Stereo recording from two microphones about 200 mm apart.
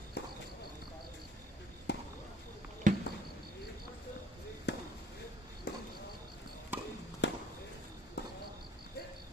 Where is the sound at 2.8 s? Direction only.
40° right (ahead or behind).